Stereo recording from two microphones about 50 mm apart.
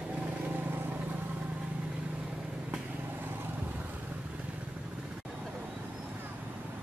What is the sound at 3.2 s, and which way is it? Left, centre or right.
Vehicle, right.